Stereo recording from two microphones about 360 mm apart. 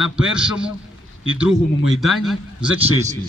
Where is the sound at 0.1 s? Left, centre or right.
Centre.